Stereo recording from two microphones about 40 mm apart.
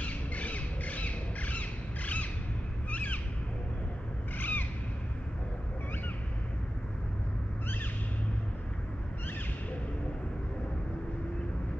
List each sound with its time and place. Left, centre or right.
0.0 s squawk: left
2.9 s owl: left
4.4 s a sound: left